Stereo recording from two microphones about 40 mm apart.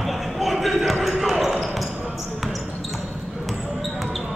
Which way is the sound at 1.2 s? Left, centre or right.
Centre.